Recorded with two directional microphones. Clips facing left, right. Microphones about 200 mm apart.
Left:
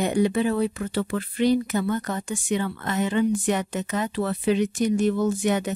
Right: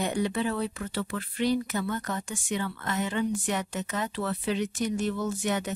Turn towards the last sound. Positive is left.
turn(degrees=15)  # may be behind; listen again after turning